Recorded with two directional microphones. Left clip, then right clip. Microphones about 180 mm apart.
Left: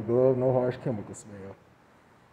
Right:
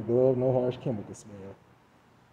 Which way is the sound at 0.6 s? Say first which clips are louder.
Left 1 dB; 30° left (ahead or behind).